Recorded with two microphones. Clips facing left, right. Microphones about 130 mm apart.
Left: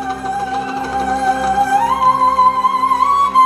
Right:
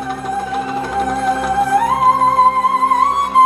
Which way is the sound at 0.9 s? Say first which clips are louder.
Left 2 dB; 30° left (ahead or behind).